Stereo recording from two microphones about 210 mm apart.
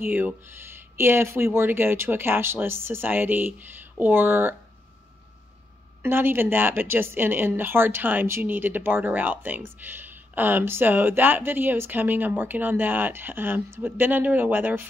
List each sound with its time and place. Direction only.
0.0 s speech: 10° right (ahead or behind)
6.0 s speech: 10° right (ahead or behind)